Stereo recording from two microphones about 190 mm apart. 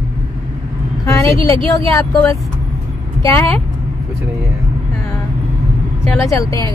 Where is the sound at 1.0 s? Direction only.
15° left (ahead or behind).